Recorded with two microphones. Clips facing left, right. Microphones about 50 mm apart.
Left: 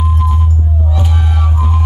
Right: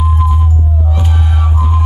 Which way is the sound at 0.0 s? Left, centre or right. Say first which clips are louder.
Right 2 dB; centre.